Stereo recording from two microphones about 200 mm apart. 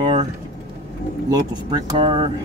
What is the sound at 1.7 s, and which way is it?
Speech, 25° right (ahead or behind).